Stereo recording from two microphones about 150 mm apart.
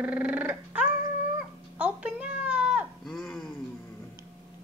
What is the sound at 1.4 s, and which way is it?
Cat, 10° right (ahead or behind).